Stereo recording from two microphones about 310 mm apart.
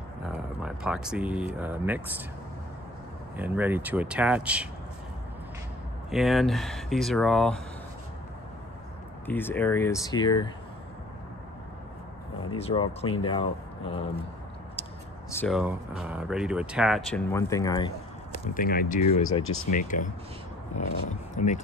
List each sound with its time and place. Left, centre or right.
0.3 s speech: centre
3.3 s speech: centre
6.0 s speech: centre
9.2 s speech: centre
12.5 s speech: centre
15.3 s speech: centre
18.5 s speech: left